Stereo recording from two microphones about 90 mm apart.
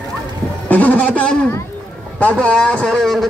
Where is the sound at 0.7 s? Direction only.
20° left (ahead or behind).